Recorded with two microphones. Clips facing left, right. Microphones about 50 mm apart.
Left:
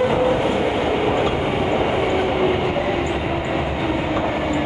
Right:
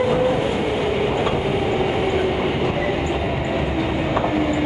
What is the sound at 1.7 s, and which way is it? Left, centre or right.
Train, left.